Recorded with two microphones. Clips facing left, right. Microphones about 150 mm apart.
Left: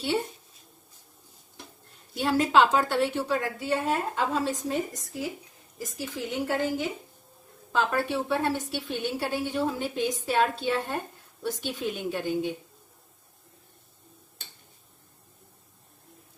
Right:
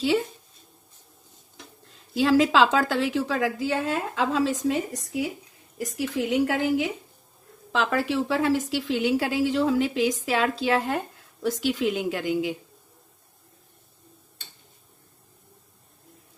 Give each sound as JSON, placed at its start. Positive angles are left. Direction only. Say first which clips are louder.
{"t": 1.9, "sound": "a woman's voice", "louder": "right 6 dB", "side_deg": -90}